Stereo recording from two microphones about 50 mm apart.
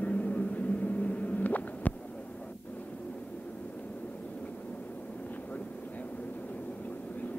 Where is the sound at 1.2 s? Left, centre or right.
Left.